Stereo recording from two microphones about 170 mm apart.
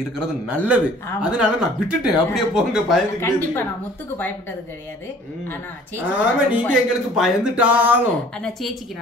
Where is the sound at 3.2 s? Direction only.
15° left (ahead or behind).